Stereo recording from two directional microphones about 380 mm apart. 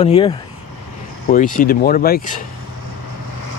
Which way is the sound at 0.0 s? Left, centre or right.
Centre.